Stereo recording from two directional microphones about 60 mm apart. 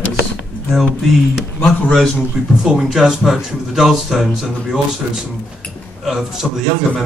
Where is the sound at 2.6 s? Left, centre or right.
Centre.